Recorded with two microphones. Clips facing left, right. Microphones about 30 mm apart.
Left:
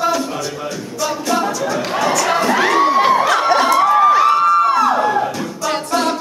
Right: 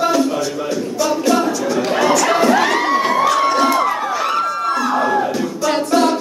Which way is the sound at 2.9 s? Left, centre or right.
Left.